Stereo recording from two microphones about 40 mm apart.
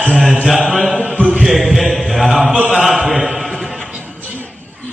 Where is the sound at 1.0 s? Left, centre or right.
Right.